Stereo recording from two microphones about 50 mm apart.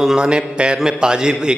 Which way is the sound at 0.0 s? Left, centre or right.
Centre.